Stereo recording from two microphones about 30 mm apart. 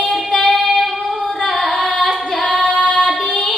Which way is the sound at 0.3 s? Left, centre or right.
Centre.